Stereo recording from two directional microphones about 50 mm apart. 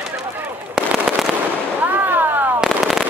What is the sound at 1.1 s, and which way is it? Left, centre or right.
Fireworks, centre.